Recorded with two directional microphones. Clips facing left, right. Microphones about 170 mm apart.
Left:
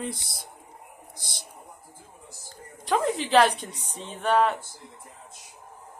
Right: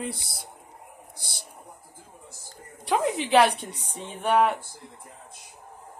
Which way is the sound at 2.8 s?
10° right (ahead or behind).